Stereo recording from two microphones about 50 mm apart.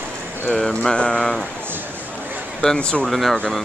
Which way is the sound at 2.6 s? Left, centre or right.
Centre.